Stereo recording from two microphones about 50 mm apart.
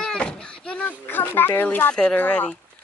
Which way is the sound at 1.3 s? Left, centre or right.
Left.